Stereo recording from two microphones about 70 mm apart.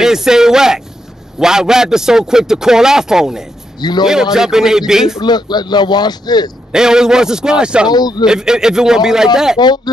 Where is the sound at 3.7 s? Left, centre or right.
Left.